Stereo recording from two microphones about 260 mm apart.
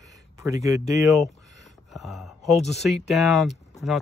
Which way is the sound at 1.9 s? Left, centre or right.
Centre.